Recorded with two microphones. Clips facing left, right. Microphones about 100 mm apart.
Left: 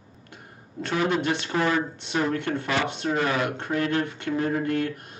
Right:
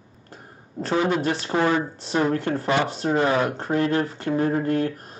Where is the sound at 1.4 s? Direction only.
25° right (ahead or behind).